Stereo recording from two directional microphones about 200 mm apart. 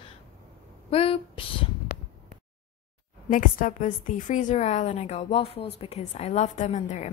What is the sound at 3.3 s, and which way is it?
A woman's voice, 40° left (ahead or behind).